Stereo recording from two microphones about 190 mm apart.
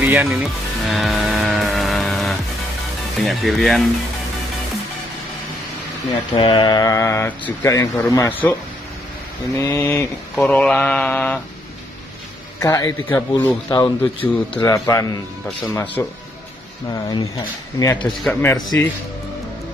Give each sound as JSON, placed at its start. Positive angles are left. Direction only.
{"t": 0.0, "sound": "music", "side_deg": -10}
{"t": 3.2, "sound": "speech", "side_deg": 0}
{"t": 6.3, "sound": "speech", "side_deg": 25}
{"t": 9.6, "sound": "speech", "side_deg": 10}
{"t": 12.5, "sound": "speech", "side_deg": 15}
{"t": 13.8, "sound": "speech", "side_deg": 10}
{"t": 17.1, "sound": "speech", "side_deg": 20}
{"t": 18.0, "sound": "speech", "side_deg": 10}